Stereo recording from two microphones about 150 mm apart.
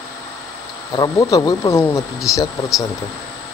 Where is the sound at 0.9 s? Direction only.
25° left (ahead or behind).